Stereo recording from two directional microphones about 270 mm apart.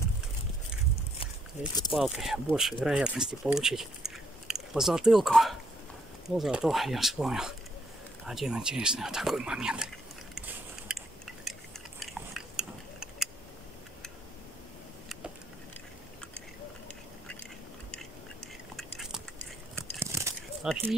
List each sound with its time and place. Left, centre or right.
1.9 s speech: centre
10.3 s a sound: centre
12.0 s biting: centre
18.8 s biting: centre
20.6 s speech: centre